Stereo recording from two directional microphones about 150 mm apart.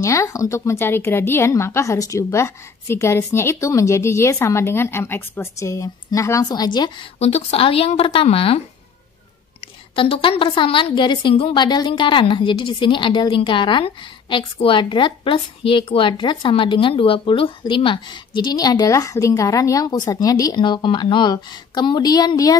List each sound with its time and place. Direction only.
0.0 s a woman's voice: 20° left (ahead or behind)
7.2 s a woman's voice: 45° left (ahead or behind)
9.9 s a woman's voice: 35° left (ahead or behind)